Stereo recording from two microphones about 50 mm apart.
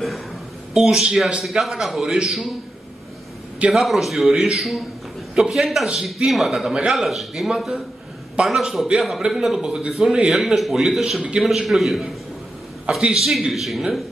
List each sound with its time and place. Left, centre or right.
0.8 s a man's voice: centre
3.7 s a man's voice: centre
5.3 s a man's voice: centre
5.6 s a man's voice: centre
7.5 s a man's voice: centre
8.5 s a man's voice: centre
9.7 s a man's voice: centre
9.9 s a man's voice: centre
12.9 s a man's voice: centre
13.2 s a man's voice: centre